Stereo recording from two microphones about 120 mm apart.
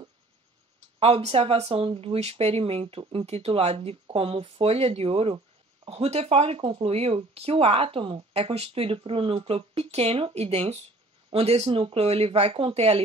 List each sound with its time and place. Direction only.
0.9 s speech: 55° right (ahead or behind)